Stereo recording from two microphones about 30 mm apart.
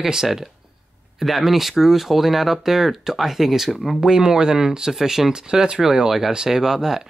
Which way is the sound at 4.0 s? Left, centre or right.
Right.